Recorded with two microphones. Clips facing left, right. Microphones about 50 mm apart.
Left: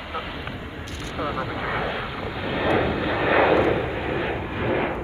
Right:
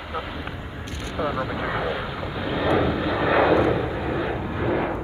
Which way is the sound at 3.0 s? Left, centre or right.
Centre.